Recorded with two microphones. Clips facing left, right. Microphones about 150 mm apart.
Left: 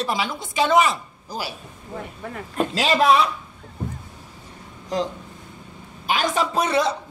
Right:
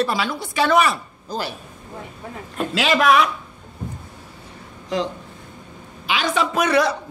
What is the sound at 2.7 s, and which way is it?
Speech, 35° left (ahead or behind).